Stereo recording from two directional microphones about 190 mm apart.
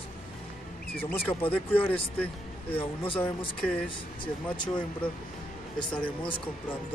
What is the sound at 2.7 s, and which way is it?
Speech, 30° left (ahead or behind).